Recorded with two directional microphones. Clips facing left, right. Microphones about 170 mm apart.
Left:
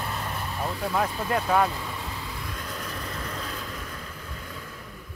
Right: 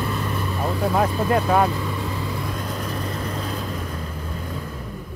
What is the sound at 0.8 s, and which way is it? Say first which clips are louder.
Speech: right 7 dB; 40° right (ahead or behind).